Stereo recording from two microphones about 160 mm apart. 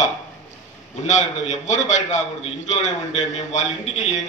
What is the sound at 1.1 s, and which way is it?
A man's voice, 50° left (ahead or behind).